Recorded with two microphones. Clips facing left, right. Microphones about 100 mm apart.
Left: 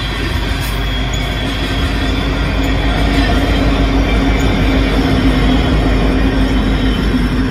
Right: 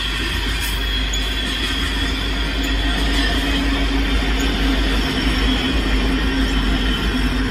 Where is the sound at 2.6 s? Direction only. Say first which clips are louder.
Left 6 dB; 65° left (ahead or behind).